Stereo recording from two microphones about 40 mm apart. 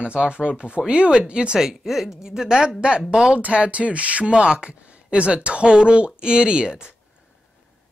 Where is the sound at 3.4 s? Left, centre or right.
Right.